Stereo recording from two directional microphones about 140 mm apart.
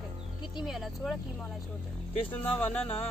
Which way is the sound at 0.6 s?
Centre (ahead or behind).